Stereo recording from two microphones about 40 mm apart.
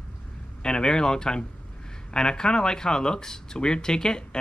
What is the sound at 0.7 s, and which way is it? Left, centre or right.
Speech, centre.